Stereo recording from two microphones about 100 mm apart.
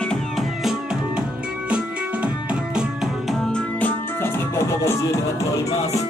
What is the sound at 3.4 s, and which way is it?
Music, 10° left (ahead or behind).